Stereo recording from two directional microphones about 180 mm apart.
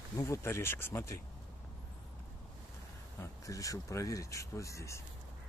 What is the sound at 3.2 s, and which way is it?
Speech, 20° left (ahead or behind).